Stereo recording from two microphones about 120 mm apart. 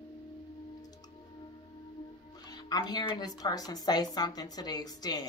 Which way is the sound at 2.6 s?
35° left (ahead or behind).